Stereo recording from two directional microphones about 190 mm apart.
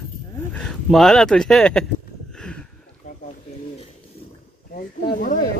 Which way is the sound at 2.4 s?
5° left (ahead or behind).